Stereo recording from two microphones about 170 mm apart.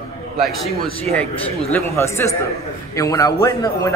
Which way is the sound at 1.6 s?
15° left (ahead or behind).